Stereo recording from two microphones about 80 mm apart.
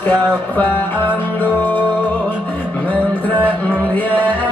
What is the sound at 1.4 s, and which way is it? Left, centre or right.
Music, left.